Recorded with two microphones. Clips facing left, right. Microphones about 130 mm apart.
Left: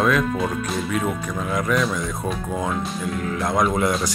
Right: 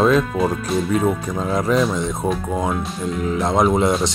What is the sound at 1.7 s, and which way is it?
Speech, 30° right (ahead or behind).